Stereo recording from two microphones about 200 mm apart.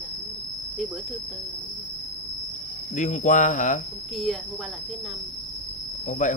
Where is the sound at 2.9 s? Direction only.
40° left (ahead or behind).